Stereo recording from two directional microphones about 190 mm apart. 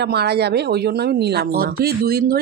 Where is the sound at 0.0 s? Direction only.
60° right (ahead or behind).